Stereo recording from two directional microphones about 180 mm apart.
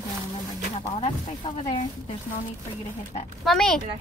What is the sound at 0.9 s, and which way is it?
Speech, 30° left (ahead or behind).